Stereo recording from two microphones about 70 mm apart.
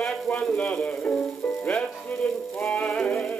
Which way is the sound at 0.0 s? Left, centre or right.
Centre.